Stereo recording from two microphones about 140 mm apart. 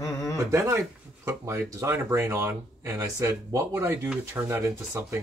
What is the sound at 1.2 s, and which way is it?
Speech, 20° right (ahead or behind).